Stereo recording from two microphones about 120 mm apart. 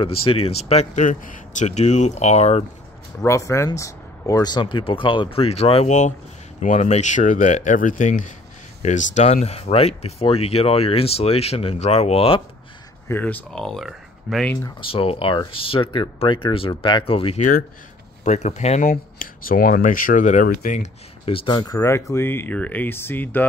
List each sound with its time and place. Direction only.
0.0 s speech: 50° left (ahead or behind)
3.3 s speech: 25° left (ahead or behind); by 5.9 s 55° left (ahead or behind)
6.6 s speech: 80° left
8.8 s speech: 80° left; by 12.4 s 55° left (ahead or behind)
13.1 s speech: 15° left (ahead or behind)
13.6 s speech: centre (ahead or behind)
14.8 s speech: 50° left (ahead or behind)
18.2 s speech: 70° left (ahead or behind)
19.8 s speech: 90° left
21.3 s speech: 40° left (ahead or behind)
21.7 s speech: 20° left (ahead or behind)